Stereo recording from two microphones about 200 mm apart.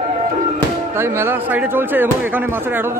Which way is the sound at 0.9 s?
10° right (ahead or behind).